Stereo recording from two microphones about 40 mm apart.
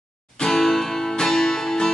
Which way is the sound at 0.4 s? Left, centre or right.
Centre.